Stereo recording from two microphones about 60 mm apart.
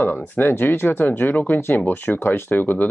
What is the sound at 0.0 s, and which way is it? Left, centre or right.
Speech, left.